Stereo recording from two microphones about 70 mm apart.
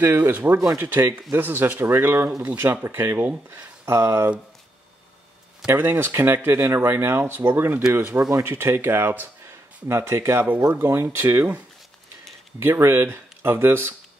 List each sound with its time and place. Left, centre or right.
0.0 s speech: right
5.8 s speech: right
12.5 s speech: right